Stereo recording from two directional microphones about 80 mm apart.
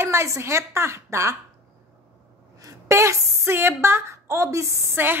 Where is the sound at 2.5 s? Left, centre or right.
Right.